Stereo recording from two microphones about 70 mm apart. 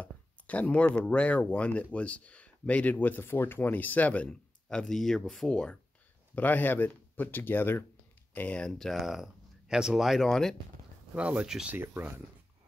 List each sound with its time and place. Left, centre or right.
0.0 s speech: centre
6.3 s speech: left
8.4 s speech: centre
8.6 s speech: centre
11.1 s speech: centre